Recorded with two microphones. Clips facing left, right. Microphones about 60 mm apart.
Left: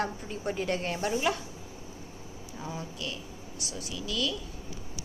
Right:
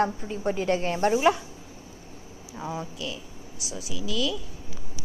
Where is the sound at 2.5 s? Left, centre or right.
Centre.